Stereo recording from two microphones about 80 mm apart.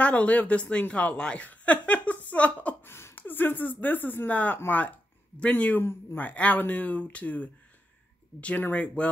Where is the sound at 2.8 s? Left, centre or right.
Left.